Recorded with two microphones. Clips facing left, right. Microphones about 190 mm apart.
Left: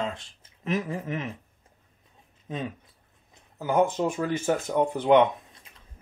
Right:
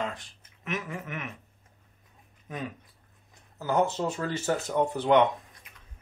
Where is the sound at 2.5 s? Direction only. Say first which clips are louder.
Left 4 dB; 25° left (ahead or behind).